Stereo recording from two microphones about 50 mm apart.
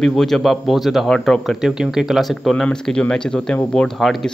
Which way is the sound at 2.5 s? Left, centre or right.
Centre.